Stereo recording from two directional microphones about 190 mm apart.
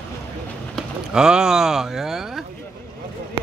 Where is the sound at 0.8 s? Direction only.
5° right (ahead or behind).